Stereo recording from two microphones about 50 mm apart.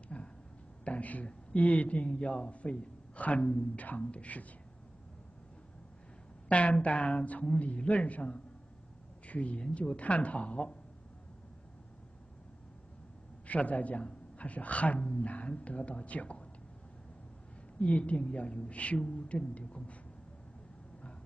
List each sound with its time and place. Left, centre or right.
0.1 s a sound: left
0.8 s a man's voice: left
6.5 s a man's voice: left
13.5 s a man's voice: left
17.7 s a man's voice: left